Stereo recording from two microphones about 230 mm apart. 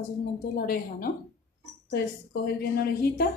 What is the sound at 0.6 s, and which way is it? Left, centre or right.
Speech, left.